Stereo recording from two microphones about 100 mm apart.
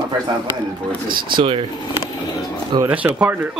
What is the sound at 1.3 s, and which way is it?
Speech, 55° right (ahead or behind).